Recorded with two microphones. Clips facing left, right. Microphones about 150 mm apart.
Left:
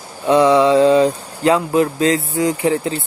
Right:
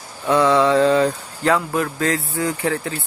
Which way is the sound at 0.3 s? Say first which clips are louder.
Left 4 dB; 20° left (ahead or behind).